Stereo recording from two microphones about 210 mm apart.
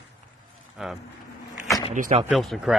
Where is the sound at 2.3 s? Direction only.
Centre (ahead or behind).